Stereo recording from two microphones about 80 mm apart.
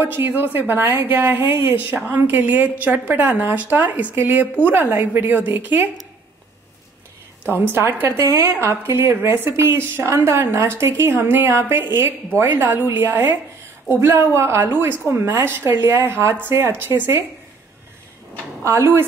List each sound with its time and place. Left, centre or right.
0.0 s a woman's voice: right
7.4 s a woman's voice: right
18.6 s a woman's voice: right